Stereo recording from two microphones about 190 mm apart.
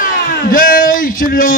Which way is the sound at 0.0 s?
45° left (ahead or behind).